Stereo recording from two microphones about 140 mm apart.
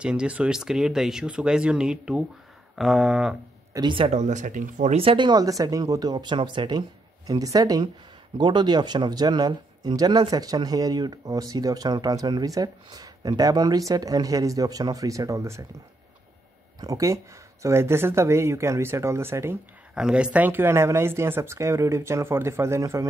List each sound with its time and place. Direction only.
0.0 s speech: 5° right (ahead or behind)
3.7 s speech: 35° right (ahead or behind)
4.1 s speech: 60° right (ahead or behind)
4.9 s speech: 35° right (ahead or behind); by 15.6 s 20° right (ahead or behind)
16.8 s speech: 25° right (ahead or behind)
19.9 s speech: 5° right (ahead or behind); by 23.0 s 20° right (ahead or behind)